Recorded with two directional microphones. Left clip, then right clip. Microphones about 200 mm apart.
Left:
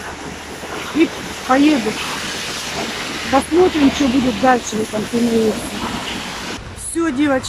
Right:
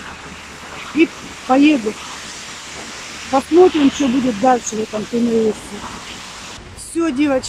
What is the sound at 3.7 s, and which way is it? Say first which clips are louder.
Speech: even; 15° left (ahead or behind).